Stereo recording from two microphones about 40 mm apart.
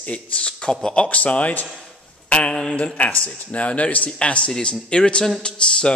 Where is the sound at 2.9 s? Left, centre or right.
Left.